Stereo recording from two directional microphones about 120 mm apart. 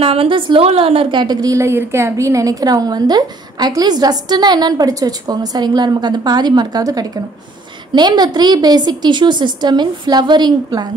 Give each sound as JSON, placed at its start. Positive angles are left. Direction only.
{"t": 0.0, "sound": "a woman's voice", "side_deg": -50}